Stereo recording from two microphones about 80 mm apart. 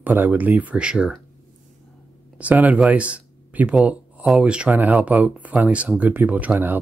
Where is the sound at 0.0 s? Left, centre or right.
Right.